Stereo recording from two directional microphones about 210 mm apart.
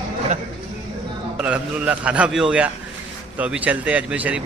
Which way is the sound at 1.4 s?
5° right (ahead or behind).